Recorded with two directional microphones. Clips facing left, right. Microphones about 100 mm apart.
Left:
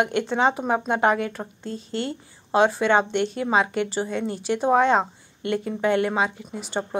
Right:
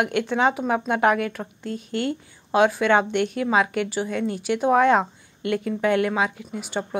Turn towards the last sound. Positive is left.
turn(degrees=20)  # may be behind; listen again after turning